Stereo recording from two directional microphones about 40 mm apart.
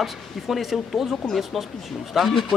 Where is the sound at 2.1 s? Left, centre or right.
Centre.